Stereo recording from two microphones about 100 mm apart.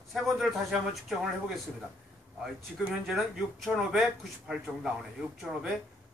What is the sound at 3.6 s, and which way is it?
Speech, centre (ahead or behind).